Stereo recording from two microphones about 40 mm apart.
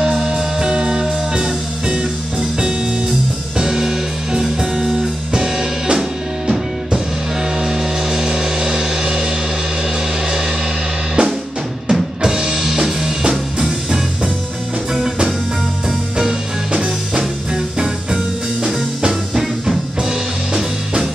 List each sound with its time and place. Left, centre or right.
0.0 s music: centre
11.2 s drum kit: right
11.9 s drum kit: centre
16.2 s music: centre